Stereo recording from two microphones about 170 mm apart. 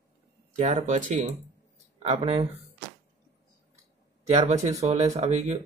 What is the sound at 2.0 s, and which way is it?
Speech, 35° right (ahead or behind).